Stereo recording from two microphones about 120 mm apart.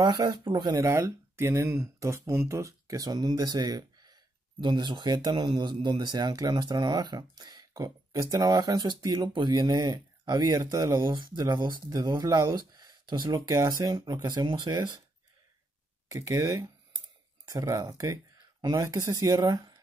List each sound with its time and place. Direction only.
0.0 s speech: 40° right (ahead or behind)
0.8 s speech: 25° right (ahead or behind)
16.1 s speech: 30° right (ahead or behind)